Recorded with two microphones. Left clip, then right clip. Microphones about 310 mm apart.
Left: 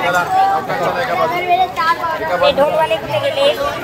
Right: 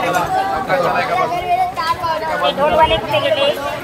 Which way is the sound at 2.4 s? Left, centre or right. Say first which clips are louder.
Even; left.